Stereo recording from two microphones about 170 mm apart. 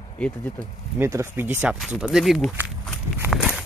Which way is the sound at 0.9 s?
15° right (ahead or behind).